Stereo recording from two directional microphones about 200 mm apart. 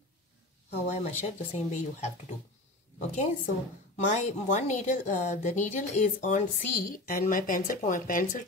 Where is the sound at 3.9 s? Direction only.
35° left (ahead or behind).